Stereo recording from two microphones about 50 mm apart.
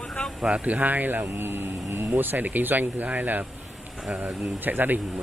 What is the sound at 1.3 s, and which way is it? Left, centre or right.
Speech, right.